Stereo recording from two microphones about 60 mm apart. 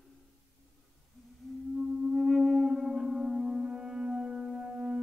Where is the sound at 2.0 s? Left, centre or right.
Centre.